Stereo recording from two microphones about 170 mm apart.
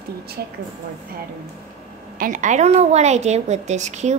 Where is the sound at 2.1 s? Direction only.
50° right (ahead or behind).